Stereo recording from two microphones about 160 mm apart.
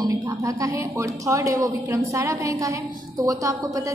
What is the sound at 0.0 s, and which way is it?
A woman's voice, 20° right (ahead or behind).